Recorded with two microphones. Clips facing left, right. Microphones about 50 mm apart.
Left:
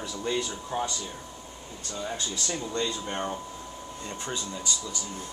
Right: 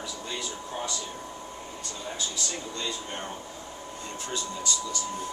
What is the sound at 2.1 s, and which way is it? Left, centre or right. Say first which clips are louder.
Speech: even; left.